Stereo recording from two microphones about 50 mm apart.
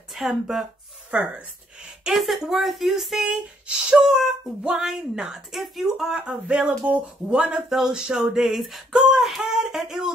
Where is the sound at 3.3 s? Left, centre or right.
Right.